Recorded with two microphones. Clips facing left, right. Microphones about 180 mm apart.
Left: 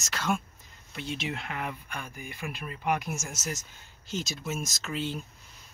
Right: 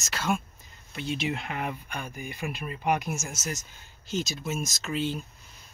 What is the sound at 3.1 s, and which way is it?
Speech, 5° right (ahead or behind).